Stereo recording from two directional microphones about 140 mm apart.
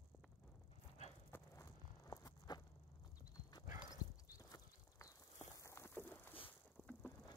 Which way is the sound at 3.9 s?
25° left (ahead or behind).